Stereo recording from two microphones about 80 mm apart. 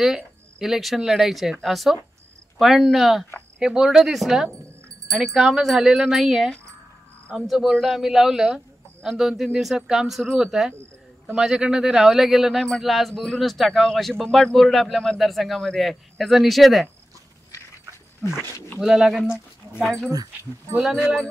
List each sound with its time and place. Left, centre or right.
0.0 s speech: centre
18.8 s speech: centre
20.1 s speech: right
20.7 s speech: centre